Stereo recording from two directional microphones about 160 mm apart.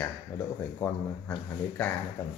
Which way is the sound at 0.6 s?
10° left (ahead or behind).